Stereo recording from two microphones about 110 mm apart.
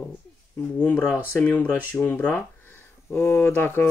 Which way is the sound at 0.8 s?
15° left (ahead or behind).